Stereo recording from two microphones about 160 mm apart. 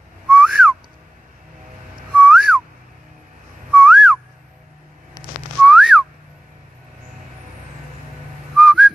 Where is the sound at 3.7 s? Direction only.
5° right (ahead or behind).